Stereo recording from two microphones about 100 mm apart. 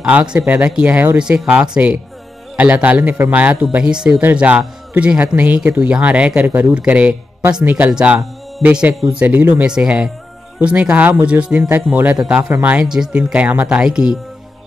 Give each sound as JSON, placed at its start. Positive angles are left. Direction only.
{"t": 0.0, "sound": "speech", "side_deg": -10}
{"t": 12.6, "sound": "speech", "side_deg": -10}